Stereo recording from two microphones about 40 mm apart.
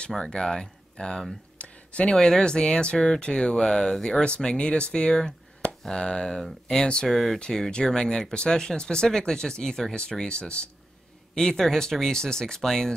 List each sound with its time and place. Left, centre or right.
0.1 s speech: centre
1.6 s a sound: left
2.1 s speech: centre
7.1 s speech: centre
7.3 s speech: centre
11.3 s speech: centre